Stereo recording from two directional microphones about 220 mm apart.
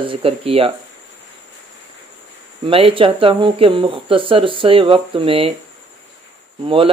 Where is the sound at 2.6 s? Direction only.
25° right (ahead or behind).